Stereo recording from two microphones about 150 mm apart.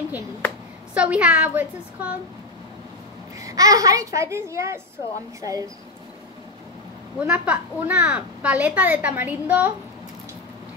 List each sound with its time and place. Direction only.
0.9 s a woman's voice: 10° right (ahead or behind)
3.3 s a child's voice: 25° right (ahead or behind)
7.2 s a woman's voice: 10° right (ahead or behind)